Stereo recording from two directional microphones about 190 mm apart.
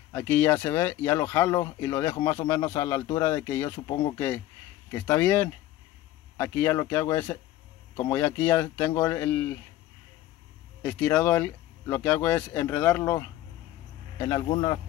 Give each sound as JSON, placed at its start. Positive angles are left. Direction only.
{"t": 0.1, "sound": "speech", "side_deg": 10}
{"t": 10.8, "sound": "speech", "side_deg": 5}